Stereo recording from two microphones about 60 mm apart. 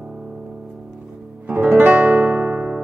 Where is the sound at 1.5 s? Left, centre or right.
Right.